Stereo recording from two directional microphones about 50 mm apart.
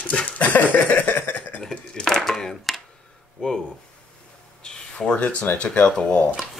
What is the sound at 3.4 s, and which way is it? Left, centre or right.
Speech, left.